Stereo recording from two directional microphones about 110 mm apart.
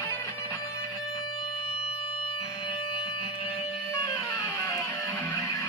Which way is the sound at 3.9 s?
30° left (ahead or behind).